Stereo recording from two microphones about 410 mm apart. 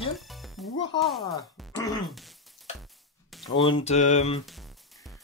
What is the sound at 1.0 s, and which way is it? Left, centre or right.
Speech, centre.